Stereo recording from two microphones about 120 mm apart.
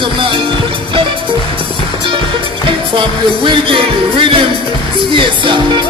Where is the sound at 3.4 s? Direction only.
45° right (ahead or behind).